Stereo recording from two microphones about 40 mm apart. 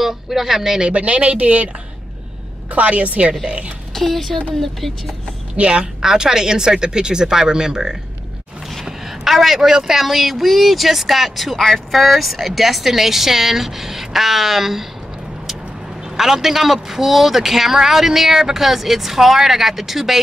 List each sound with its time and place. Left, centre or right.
0.0 s a man's voice: centre
0.8 s speech: right
2.7 s speech: right
3.9 s speech: centre
5.6 s speech: right
6.0 s a man's voice: centre
16.2 s a man's voice: centre